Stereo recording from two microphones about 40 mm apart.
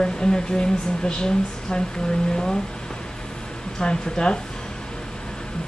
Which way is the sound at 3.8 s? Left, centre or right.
Left.